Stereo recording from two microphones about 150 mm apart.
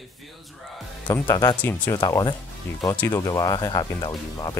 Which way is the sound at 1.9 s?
25° left (ahead or behind).